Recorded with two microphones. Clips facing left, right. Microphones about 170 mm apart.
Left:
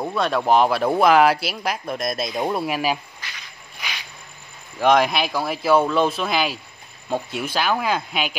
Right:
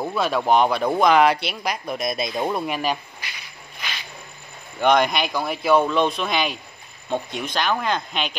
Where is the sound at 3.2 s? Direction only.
10° right (ahead or behind).